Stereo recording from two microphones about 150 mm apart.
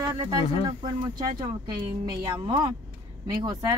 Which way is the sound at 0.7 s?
25° right (ahead or behind).